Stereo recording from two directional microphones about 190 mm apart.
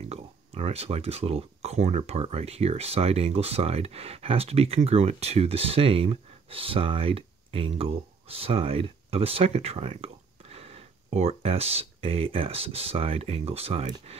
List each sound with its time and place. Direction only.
0.1 s speech: 35° right (ahead or behind)